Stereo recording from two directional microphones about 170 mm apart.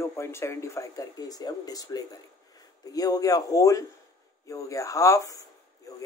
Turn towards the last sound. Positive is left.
turn(degrees=20)  # may be behind; listen again after turning